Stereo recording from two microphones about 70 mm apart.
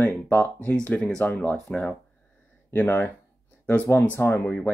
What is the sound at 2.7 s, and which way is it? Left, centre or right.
Speech, left.